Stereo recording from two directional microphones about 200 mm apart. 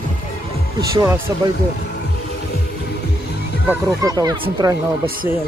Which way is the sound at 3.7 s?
15° right (ahead or behind).